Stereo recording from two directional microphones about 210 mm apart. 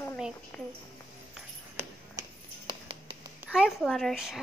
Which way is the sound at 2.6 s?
25° right (ahead or behind).